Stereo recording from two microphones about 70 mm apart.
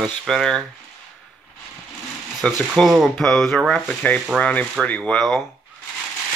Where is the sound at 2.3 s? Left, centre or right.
Centre.